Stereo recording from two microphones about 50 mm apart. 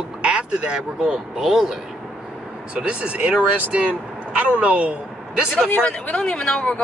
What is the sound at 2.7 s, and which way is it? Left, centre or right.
Speech, right.